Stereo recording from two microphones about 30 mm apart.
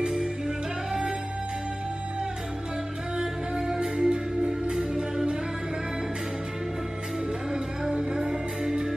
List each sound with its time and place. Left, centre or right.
3.5 s music: centre
7.9 s music: right